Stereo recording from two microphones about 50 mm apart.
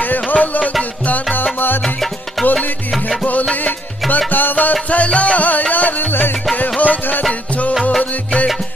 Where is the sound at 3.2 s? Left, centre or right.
Left.